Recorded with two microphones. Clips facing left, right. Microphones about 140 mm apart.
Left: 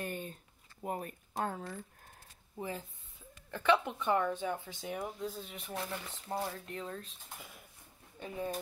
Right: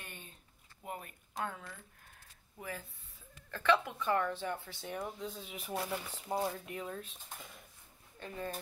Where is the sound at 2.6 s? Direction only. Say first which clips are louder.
Left 4 dB; 25° left (ahead or behind); by 7.6 s centre (ahead or behind).